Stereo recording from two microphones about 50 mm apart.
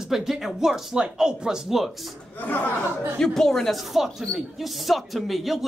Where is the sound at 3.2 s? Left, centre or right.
Centre.